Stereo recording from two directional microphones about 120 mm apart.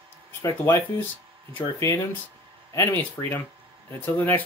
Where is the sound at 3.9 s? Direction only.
15° left (ahead or behind).